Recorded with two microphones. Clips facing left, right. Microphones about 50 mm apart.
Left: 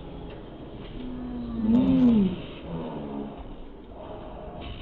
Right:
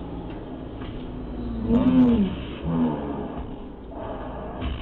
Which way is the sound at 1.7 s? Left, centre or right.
Right.